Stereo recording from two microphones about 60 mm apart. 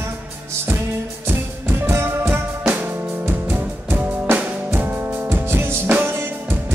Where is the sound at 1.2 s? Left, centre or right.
Right.